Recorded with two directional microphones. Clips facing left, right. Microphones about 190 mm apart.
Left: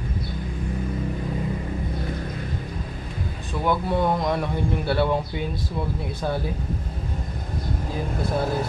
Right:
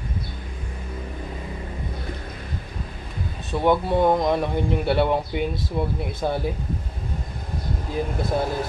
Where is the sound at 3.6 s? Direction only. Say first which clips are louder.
Right 4 dB; 20° right (ahead or behind).